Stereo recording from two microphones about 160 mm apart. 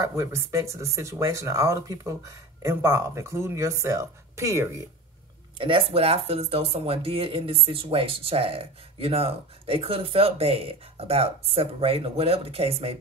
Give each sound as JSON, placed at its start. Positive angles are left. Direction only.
{"t": 0.0, "sound": "speech", "side_deg": -15}
{"t": 5.6, "sound": "speech", "side_deg": -35}